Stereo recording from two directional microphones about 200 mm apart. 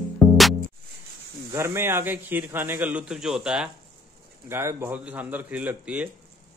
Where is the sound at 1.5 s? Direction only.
15° right (ahead or behind).